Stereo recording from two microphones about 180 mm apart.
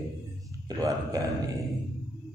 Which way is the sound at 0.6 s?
20° right (ahead or behind).